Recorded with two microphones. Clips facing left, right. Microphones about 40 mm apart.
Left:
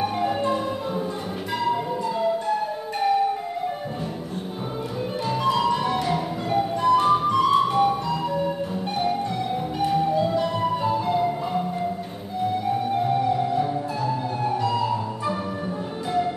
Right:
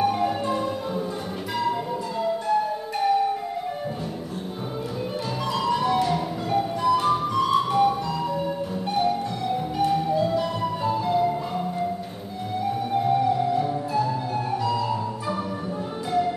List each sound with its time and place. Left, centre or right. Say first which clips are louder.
0.0 s music: right 1 dB; centre
5.4 s music: left 2 dB; centre
9.8 s music: left 1 dB; centre
13.0 s music: right 3 dB; centre